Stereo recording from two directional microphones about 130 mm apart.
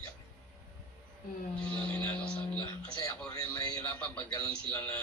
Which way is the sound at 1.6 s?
10° left (ahead or behind).